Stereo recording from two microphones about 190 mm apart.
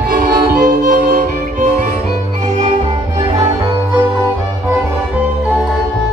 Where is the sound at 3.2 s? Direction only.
25° right (ahead or behind).